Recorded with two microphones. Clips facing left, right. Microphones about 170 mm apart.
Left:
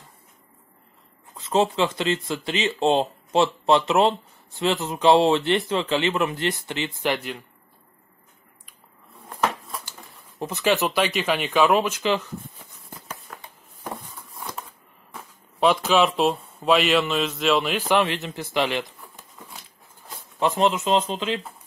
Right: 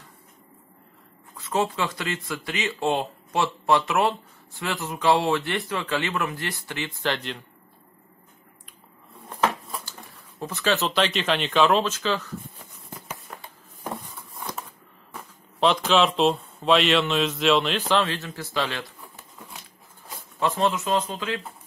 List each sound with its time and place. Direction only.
1.3 s speech: 25° left (ahead or behind)
9.4 s a sound: centre (ahead or behind)
10.4 s speech: 15° left (ahead or behind)
15.1 s speech: 5° left (ahead or behind)
20.3 s speech: 20° left (ahead or behind)